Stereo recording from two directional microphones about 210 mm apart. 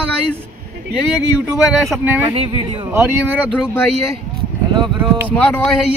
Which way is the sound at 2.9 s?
10° right (ahead or behind).